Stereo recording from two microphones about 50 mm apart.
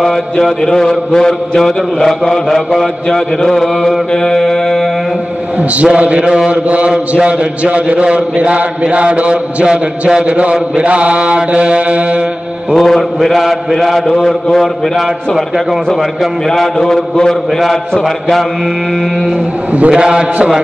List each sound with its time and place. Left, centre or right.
0.0 s mantra: centre
5.9 s a man's voice: right
6.5 s a man's voice: right
12.7 s a man's voice: centre
16.7 s mantra: centre
19.9 s a man's voice: centre